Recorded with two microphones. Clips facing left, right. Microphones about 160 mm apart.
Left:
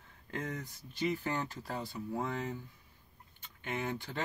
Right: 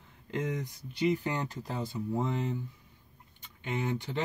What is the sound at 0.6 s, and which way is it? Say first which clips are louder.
Speech: right 6 dB; 20° right (ahead or behind).